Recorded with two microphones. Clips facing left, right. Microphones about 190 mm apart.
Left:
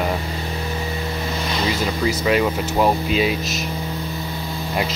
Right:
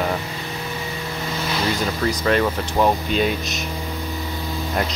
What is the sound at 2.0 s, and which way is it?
Speech, 10° left (ahead or behind).